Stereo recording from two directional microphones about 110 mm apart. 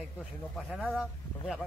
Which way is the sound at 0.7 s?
10° right (ahead or behind).